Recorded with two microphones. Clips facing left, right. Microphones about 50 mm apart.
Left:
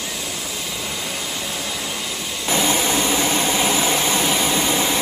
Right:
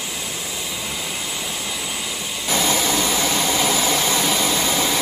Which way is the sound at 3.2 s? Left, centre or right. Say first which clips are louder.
Left 1 dB; centre.